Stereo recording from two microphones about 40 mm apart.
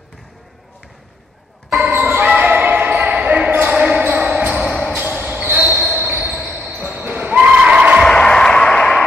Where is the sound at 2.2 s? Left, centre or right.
Right.